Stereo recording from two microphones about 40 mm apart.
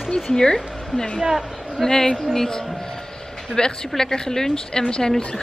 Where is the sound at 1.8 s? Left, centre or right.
Centre.